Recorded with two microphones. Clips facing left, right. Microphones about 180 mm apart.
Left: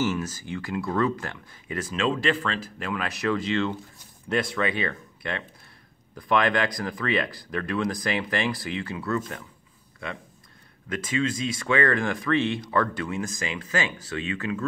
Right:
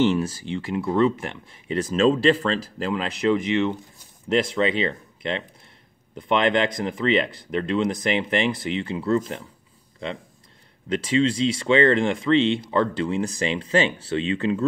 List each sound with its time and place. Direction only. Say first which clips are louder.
0.0 s speech: right 6 dB; 30° right (ahead or behind)
1.8 s speech: right 7 dB; 40° right (ahead or behind)
10.9 s speech: right 6 dB; 30° right (ahead or behind)